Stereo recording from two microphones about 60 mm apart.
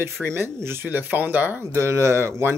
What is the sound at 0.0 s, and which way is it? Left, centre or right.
Speech, right.